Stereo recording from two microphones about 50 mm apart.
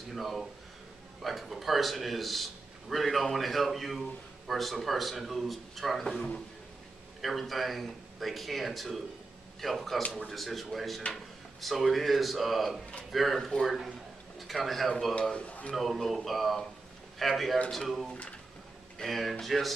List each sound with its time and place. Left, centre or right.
0.1 s a man's voice: centre
15.2 s speech: left
15.7 s a man's voice: centre